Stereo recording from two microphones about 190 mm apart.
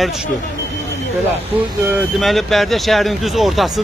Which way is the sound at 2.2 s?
Centre (ahead or behind).